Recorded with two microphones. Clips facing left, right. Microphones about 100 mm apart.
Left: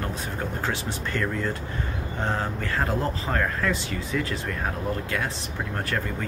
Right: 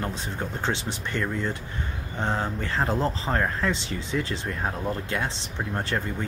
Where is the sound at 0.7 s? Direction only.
20° right (ahead or behind).